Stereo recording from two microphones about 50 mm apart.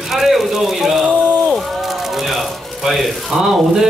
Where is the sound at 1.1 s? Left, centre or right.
Centre.